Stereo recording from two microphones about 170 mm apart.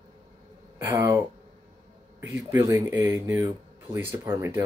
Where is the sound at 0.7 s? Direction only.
20° right (ahead or behind).